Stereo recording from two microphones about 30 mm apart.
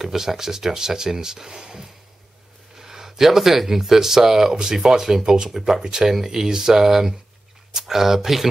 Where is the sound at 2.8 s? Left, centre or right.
Centre.